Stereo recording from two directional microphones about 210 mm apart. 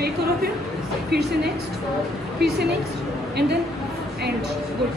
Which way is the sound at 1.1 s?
50° right (ahead or behind).